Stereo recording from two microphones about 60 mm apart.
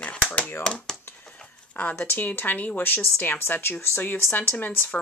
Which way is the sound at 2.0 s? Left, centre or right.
Left.